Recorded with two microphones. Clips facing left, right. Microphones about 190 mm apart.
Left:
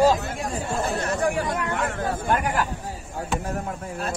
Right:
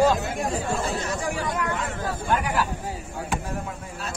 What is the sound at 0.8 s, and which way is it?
Speech, 60° left (ahead or behind).